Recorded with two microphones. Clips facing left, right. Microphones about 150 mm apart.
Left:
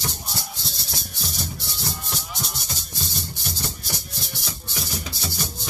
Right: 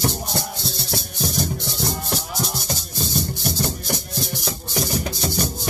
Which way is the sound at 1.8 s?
55° right (ahead or behind).